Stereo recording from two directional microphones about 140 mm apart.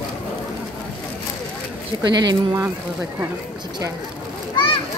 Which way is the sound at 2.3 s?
30° right (ahead or behind).